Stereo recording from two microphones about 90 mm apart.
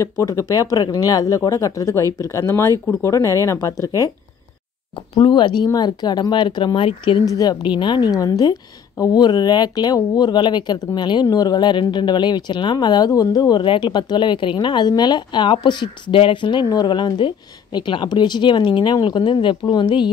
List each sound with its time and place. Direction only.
0.0 s speech: 35° left (ahead or behind)
4.9 s speech: 60° left (ahead or behind); by 7.2 s 80° left
7.2 s a woman's voice: 45° left (ahead or behind)
7.6 s a woman's voice: 60° left (ahead or behind)
16.6 s a woman's voice: 50° left (ahead or behind)